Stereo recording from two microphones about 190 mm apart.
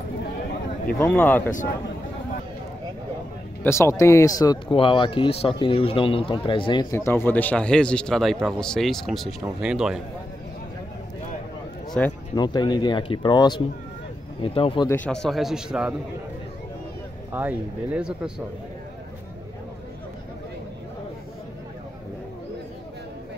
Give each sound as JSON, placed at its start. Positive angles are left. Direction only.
{"t": 0.9, "sound": "speech", "side_deg": 10}
{"t": 3.6, "sound": "a man's voice", "side_deg": 15}
{"t": 12.0, "sound": "speech", "side_deg": 5}
{"t": 12.4, "sound": "speech", "side_deg": 20}
{"t": 14.9, "sound": "a man's voice", "side_deg": 5}
{"t": 17.3, "sound": "speech", "side_deg": -10}